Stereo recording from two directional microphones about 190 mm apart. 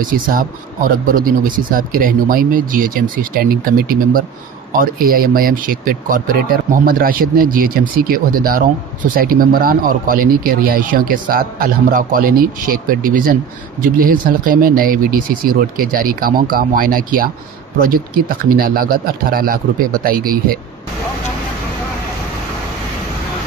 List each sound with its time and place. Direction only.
0.0 s speech: 50° right (ahead or behind)